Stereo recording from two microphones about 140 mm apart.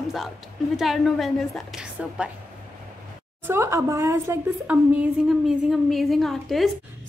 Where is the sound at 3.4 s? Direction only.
20° right (ahead or behind).